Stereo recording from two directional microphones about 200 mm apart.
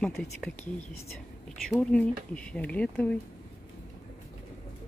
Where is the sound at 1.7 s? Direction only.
5° left (ahead or behind).